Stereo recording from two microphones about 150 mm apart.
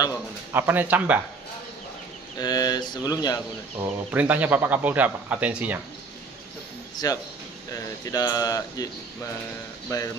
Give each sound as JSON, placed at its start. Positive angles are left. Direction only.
{"t": 0.5, "sound": "speech", "side_deg": -15}
{"t": 2.3, "sound": "a sound", "side_deg": 25}
{"t": 4.1, "sound": "speech", "side_deg": -10}
{"t": 7.0, "sound": "speech", "side_deg": 25}
{"t": 9.8, "sound": "speech", "side_deg": 20}